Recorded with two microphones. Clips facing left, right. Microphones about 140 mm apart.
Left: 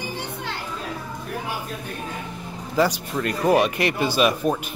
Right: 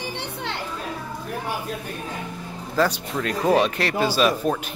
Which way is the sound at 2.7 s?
10° left (ahead or behind).